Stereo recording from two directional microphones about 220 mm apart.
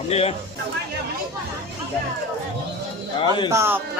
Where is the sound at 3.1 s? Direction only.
20° left (ahead or behind).